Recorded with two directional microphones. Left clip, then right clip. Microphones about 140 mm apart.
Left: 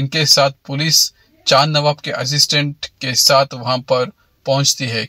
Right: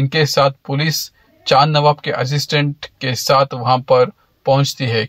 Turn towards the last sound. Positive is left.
turn(degrees=-25)  # may be behind; listen again after turning